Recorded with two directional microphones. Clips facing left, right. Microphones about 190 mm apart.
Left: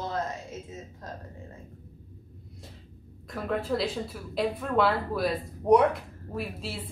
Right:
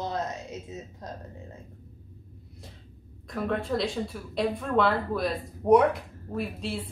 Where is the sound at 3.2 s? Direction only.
Centre (ahead or behind).